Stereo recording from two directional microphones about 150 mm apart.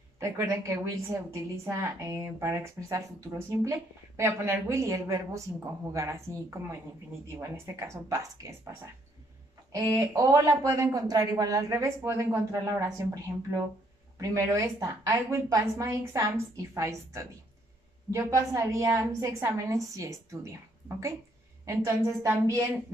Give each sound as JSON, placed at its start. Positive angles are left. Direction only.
{"t": 0.2, "sound": "a woman's voice", "side_deg": -20}
{"t": 9.7, "sound": "a woman's voice", "side_deg": -20}
{"t": 21.6, "sound": "a woman's voice", "side_deg": -20}